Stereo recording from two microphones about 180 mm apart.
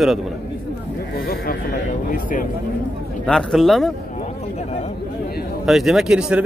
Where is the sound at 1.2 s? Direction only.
55° left (ahead or behind).